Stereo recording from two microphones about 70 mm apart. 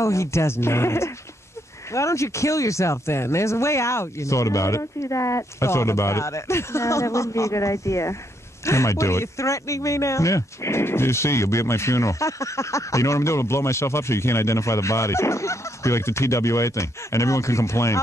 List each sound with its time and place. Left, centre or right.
0.0 s speech: left